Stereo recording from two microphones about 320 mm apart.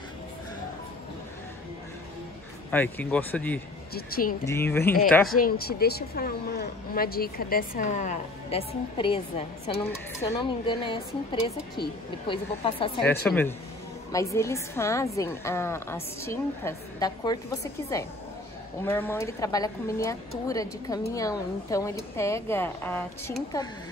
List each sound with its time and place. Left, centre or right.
2.7 s speech: centre
3.9 s speech: left
4.5 s a woman's voice: centre
5.3 s a woman's voice: left
13.0 s a woman's voice: centre